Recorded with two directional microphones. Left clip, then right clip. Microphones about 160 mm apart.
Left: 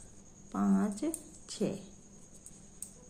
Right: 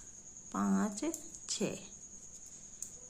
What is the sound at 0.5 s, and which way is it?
Speech, 20° right (ahead or behind).